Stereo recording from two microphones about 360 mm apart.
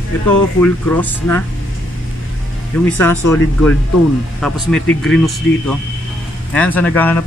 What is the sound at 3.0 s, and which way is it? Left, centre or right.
Speech, centre.